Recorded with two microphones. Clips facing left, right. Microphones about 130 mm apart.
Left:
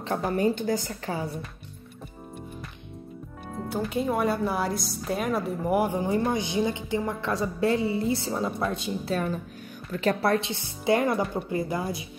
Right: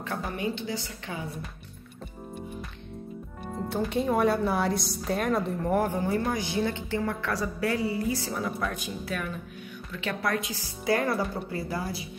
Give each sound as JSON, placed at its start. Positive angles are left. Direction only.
{"t": 0.0, "sound": "a woman's voice", "side_deg": 35}
{"t": 3.5, "sound": "a woman's voice", "side_deg": 0}